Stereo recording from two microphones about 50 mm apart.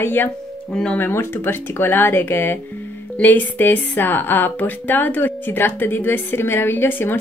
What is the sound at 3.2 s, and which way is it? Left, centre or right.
Speech, left.